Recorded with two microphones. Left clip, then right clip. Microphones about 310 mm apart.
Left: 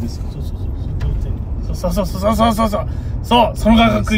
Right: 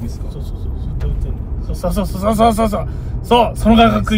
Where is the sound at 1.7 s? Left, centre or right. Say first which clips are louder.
Left 1 dB; centre.